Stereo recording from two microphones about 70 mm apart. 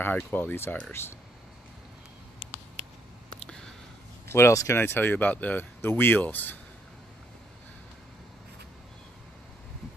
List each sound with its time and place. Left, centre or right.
0.0 s speech: left
3.3 s a sound: centre
4.3 s speech: left
4.8 s speech: left